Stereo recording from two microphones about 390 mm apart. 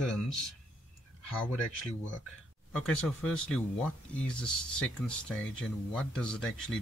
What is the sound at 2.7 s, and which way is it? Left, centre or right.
Speech, centre.